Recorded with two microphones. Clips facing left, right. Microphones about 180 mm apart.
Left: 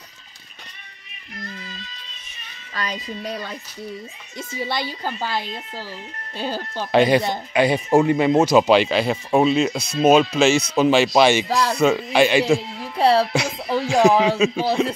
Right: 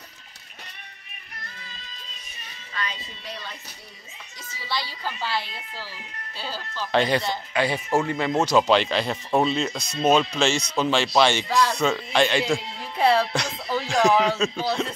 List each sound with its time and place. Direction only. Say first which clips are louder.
2.7 s a child's voice: left 6 dB; 40° left (ahead or behind)
4.6 s speech: left 2 dB; 50° left (ahead or behind)
6.9 s speech: left 6 dB; 10° left (ahead or behind)
13.2 s music: left 5 dB; 5° left (ahead or behind)
14.0 s a man's voice: left 4 dB; 5° left (ahead or behind)
14.3 s speech: left 5 dB; 15° left (ahead or behind)